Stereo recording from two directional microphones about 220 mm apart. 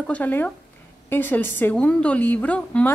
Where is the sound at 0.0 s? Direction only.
5° left (ahead or behind).